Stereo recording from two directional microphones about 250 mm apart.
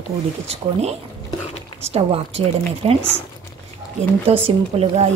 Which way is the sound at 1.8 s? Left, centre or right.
Right.